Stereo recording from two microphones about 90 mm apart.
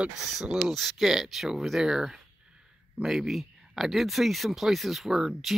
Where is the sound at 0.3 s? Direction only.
5° right (ahead or behind).